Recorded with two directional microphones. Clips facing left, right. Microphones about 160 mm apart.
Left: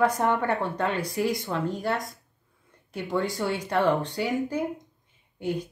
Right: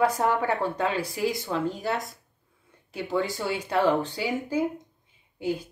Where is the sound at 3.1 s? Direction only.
5° right (ahead or behind).